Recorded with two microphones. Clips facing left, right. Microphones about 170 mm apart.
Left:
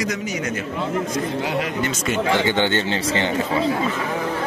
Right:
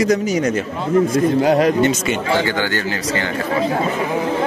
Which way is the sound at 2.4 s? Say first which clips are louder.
Left 1 dB; 25° left (ahead or behind).